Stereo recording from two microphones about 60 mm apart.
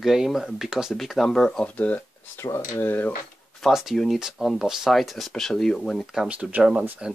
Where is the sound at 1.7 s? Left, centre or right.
Left.